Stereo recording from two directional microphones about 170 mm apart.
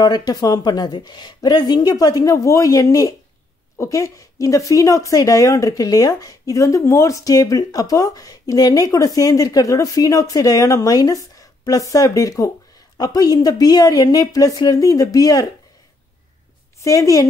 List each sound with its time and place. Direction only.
0.0 s speech: 25° left (ahead or behind)
16.8 s speech: 20° left (ahead or behind)